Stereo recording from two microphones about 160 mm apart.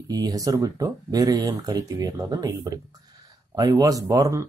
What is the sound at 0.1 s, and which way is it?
Speech, 25° right (ahead or behind).